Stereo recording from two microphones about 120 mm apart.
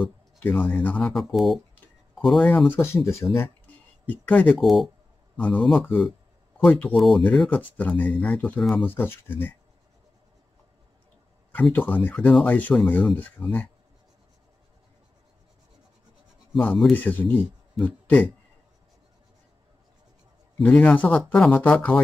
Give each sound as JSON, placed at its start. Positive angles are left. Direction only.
{"t": 0.4, "sound": "speech", "side_deg": 15}
{"t": 2.7, "sound": "speech", "side_deg": 20}
{"t": 4.0, "sound": "speech", "side_deg": 10}
{"t": 4.6, "sound": "speech", "side_deg": 0}
{"t": 7.0, "sound": "speech", "side_deg": 0}
{"t": 7.7, "sound": "speech", "side_deg": 10}
{"t": 8.8, "sound": "speech", "side_deg": 20}
{"t": 11.7, "sound": "speech", "side_deg": 10}
{"t": 16.5, "sound": "speech", "side_deg": 0}
{"t": 16.9, "sound": "speech", "side_deg": 15}
{"t": 20.6, "sound": "speech", "side_deg": 10}